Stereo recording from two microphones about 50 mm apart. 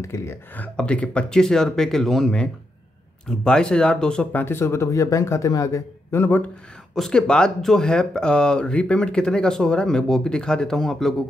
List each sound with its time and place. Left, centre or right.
0.0 s a man's voice: left
0.7 s speech: left
4.5 s a man's voice: left
7.0 s speech: centre